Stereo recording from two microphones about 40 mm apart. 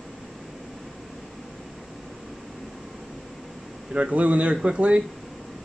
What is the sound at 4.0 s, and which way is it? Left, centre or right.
Speech, right.